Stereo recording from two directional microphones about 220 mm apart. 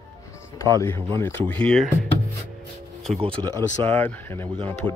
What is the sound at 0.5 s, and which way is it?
Speech, 15° left (ahead or behind).